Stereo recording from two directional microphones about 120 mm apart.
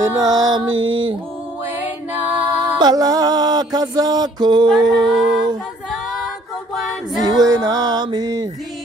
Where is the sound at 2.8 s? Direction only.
35° right (ahead or behind).